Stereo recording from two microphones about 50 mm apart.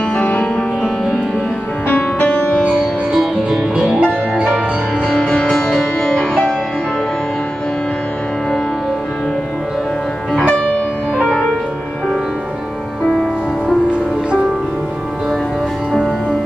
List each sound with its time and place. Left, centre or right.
0.1 s music: left
1.9 s music: left
3.4 s music: centre
5.0 s music: centre
10.5 s music: centre
15.9 s music: centre